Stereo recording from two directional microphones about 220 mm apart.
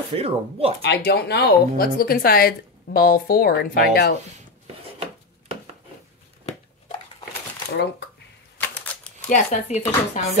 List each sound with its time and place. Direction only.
0.1 s speech: 25° right (ahead or behind)
0.8 s speech: 50° left (ahead or behind)
8.6 s typewriter: 5° left (ahead or behind)
9.3 s speech: 35° left (ahead or behind)